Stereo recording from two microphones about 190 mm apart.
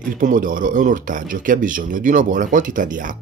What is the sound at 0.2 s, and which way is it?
Speech, 45° right (ahead or behind).